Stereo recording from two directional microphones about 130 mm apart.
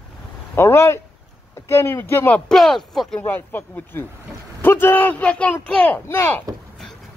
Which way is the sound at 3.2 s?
15° left (ahead or behind).